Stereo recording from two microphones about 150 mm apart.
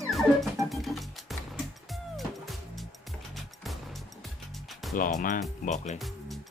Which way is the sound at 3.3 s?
Centre (ahead or behind).